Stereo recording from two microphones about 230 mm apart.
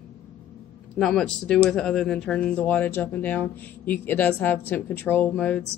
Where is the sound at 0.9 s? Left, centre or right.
Centre.